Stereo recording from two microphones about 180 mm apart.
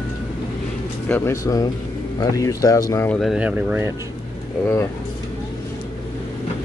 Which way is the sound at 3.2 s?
5° right (ahead or behind).